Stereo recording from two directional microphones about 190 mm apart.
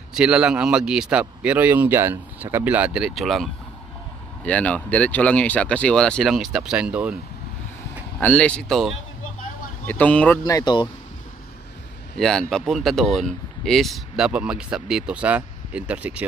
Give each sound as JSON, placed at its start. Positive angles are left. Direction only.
{"t": 0.1, "sound": "speech", "side_deg": -5}
{"t": 4.5, "sound": "speech", "side_deg": 5}
{"t": 8.2, "sound": "speech", "side_deg": 5}
{"t": 10.4, "sound": "speech", "side_deg": 20}
{"t": 12.2, "sound": "speech", "side_deg": 0}